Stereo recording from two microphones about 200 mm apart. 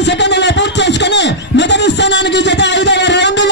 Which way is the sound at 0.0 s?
60° left (ahead or behind).